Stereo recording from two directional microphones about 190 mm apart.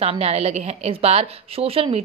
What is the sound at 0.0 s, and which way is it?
A woman's voice, 30° right (ahead or behind).